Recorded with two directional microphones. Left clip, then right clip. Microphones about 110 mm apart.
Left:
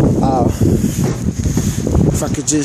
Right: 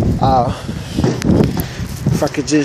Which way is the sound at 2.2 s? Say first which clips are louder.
Right 3 dB; 25° left (ahead or behind).